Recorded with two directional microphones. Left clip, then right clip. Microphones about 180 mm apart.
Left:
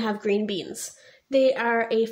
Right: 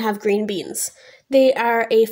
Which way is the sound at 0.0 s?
40° right (ahead or behind).